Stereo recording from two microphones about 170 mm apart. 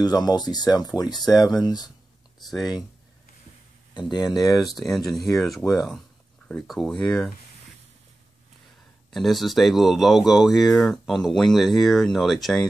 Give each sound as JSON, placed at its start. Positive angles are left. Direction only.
{"t": 0.0, "sound": "speech", "side_deg": 25}
{"t": 2.4, "sound": "speech", "side_deg": 0}
{"t": 4.1, "sound": "speech", "side_deg": 25}
{"t": 4.6, "sound": "speech", "side_deg": 0}
{"t": 9.1, "sound": "speech", "side_deg": 0}